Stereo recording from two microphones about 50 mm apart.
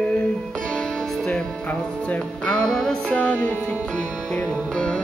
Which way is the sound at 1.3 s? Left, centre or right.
Left.